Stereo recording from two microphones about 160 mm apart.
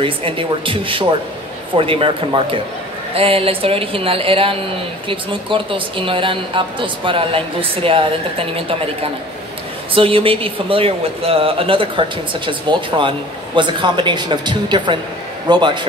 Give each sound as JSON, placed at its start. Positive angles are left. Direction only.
{"t": 0.0, "sound": "a woman's voice", "side_deg": -35}